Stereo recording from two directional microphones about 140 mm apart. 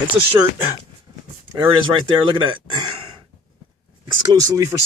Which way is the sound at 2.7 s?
35° right (ahead or behind).